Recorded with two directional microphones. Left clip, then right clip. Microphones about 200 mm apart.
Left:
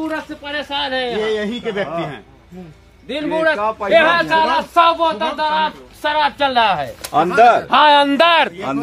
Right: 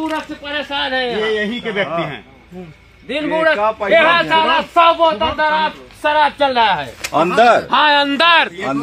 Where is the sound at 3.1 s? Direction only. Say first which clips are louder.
Right 2 dB; 30° right (ahead or behind).